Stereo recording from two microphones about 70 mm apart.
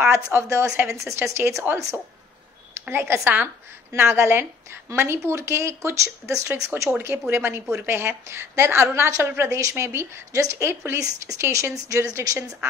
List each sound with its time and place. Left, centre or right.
0.0 s a woman's voice: right
2.9 s a woman's voice: right
9.8 s a woman's voice: right
11.0 s speech: right
11.3 s a woman's voice: right